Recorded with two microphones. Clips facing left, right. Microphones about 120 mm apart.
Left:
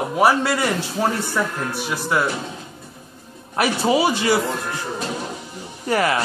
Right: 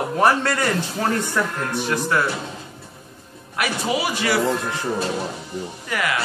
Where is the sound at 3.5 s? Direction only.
30° left (ahead or behind).